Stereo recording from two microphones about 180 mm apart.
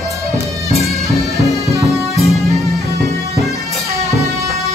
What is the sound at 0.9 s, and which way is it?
Music, centre (ahead or behind).